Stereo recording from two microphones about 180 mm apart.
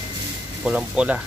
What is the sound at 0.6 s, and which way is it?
Speech, 5° right (ahead or behind).